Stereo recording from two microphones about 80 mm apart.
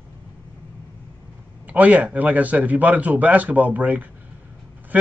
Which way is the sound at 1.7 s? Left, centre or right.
Centre.